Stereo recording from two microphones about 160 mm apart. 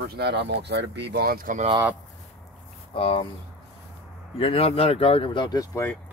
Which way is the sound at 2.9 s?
35° left (ahead or behind).